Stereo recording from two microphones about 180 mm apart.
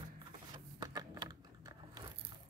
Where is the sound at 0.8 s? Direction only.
20° right (ahead or behind).